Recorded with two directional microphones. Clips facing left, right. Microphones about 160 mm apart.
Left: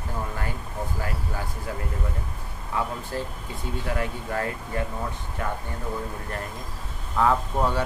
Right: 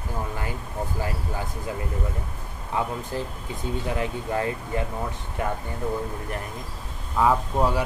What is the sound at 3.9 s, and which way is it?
Speech, 20° right (ahead or behind).